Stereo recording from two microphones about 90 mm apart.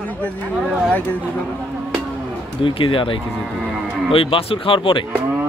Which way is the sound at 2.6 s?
70° left (ahead or behind).